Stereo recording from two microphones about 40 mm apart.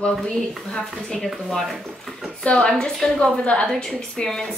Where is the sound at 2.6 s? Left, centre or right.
Left.